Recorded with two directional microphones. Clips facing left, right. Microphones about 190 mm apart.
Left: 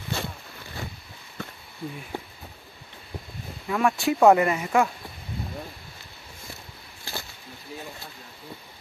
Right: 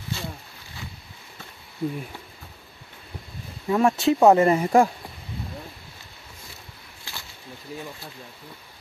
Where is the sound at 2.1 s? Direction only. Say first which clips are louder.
Left 8 dB; 50° left (ahead or behind).